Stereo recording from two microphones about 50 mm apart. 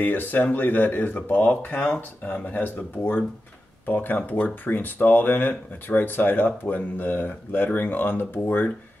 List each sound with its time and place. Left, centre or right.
0.0 s speech: left
2.7 s speech: left